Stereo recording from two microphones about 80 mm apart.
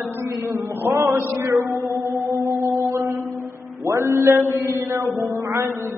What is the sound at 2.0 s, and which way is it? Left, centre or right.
Music, right.